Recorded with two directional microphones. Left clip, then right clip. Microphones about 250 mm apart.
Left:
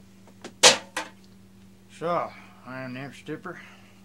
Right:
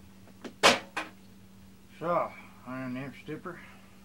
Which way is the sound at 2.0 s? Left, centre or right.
Centre.